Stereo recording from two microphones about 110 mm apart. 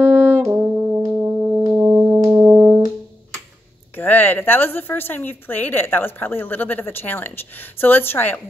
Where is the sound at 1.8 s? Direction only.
30° right (ahead or behind).